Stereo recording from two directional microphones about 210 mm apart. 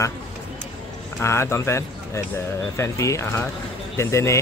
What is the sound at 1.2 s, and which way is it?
A man's voice, 10° left (ahead or behind).